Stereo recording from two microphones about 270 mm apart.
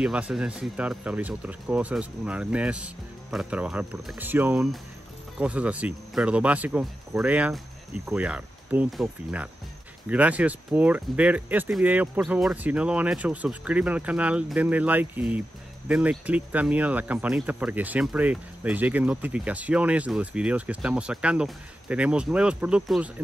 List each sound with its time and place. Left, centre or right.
0.0 s speech: centre